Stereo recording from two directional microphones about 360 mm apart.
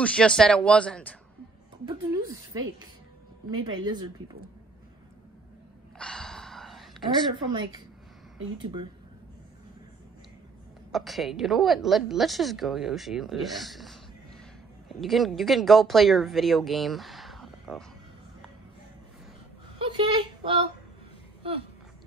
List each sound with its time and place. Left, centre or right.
0.0 s a woman's voice: centre
1.9 s a woman's voice: centre
5.9 s gasp: centre
7.3 s a woman's voice: centre
10.9 s a woman's voice: centre
19.8 s speech: centre